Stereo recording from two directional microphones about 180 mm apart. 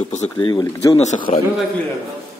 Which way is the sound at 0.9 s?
40° left (ahead or behind).